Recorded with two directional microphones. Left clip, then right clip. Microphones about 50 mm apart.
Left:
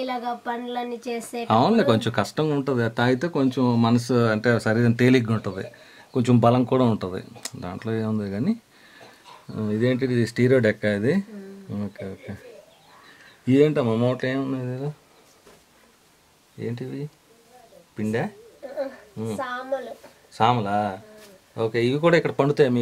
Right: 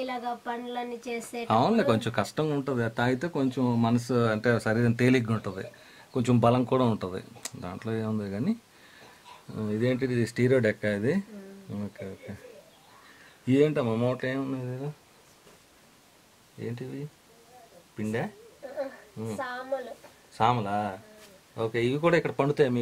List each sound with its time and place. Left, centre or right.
0.0 s speech: centre
4.1 s speech: centre
16.5 s a woman's voice: centre